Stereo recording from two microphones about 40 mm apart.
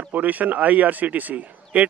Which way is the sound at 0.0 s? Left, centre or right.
Right.